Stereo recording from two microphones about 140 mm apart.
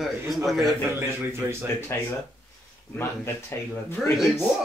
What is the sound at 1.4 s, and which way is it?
Speech, 15° right (ahead or behind).